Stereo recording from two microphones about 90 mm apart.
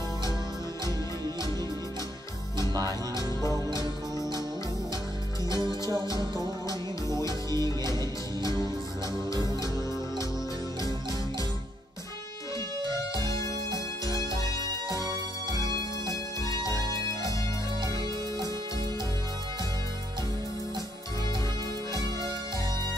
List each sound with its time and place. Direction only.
2.9 s music: 35° left (ahead or behind)
5.5 s music: 50° right (ahead or behind)
9.3 s music: 40° left (ahead or behind)
10.8 s music: 40° left (ahead or behind)
13.1 s music: 40° left (ahead or behind)
16.1 s music: 40° left (ahead or behind)